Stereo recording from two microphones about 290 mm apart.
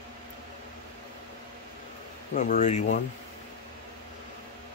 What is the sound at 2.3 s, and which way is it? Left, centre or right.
Speech, left.